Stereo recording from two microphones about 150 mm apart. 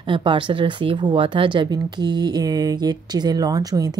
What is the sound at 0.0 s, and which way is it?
Speech, 35° right (ahead or behind).